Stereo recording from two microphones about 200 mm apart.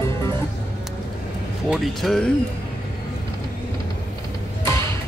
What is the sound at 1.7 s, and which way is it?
Speech, centre (ahead or behind).